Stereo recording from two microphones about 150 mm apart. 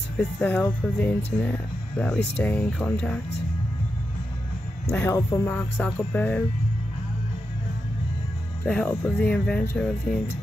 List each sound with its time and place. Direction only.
0.2 s speech: 10° left (ahead or behind)
4.9 s speech: 15° left (ahead or behind)
8.6 s speech: 10° left (ahead or behind)